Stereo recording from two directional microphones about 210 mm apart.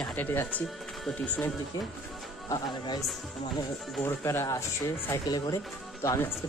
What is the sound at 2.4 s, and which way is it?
Speech, 20° left (ahead or behind).